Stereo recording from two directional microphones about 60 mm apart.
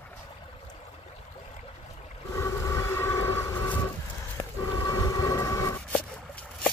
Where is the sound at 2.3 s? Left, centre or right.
Left.